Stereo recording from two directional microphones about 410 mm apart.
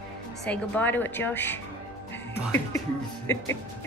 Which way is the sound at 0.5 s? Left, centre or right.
Centre.